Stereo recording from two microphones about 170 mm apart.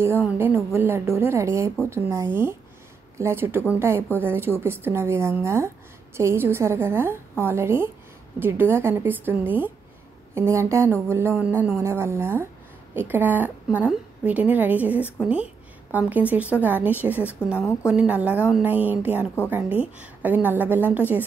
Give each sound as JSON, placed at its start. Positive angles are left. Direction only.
{"t": 0.7, "sound": "a woman's voice", "side_deg": -15}